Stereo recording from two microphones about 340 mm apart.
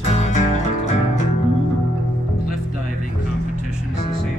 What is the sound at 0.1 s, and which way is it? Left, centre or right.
Music, centre.